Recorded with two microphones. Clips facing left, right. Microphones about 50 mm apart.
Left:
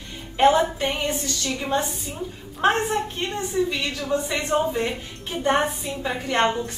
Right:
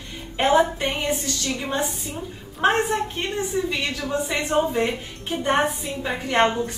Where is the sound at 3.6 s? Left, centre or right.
Centre.